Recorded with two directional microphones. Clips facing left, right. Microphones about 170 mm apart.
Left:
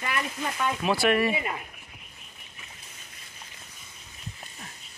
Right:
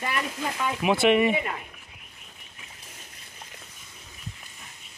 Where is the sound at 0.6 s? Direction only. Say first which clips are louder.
Right 2 dB; 15° right (ahead or behind).